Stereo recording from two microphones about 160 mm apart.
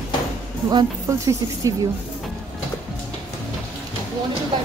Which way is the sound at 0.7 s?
20° right (ahead or behind).